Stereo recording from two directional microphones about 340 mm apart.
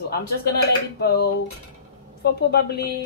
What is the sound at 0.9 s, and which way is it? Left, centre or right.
A woman's voice, left.